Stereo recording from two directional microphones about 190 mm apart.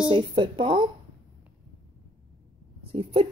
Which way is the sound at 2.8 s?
30° right (ahead or behind).